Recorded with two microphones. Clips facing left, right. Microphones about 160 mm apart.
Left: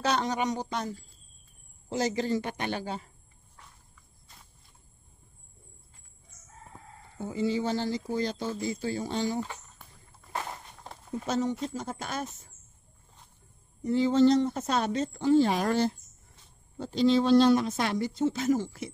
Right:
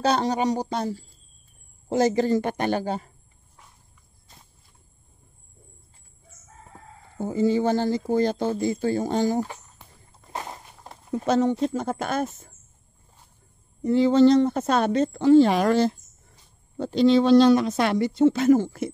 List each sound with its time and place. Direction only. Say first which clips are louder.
0.0 s speech: right 6 dB; 35° right (ahead or behind)
1.9 s speech: right 8 dB; 50° right (ahead or behind)
7.2 s speech: right 7 dB; 45° right (ahead or behind)
10.3 s walk: right 1 dB; 15° right (ahead or behind)
11.2 s speech: right 8 dB; 70° right (ahead or behind)
11.6 s speech: right 9 dB; 55° right (ahead or behind)
13.8 s speech: right 5 dB; 70° right (ahead or behind); by 15.9 s 90° right
16.7 s speech: right 5 dB; 65° right (ahead or behind)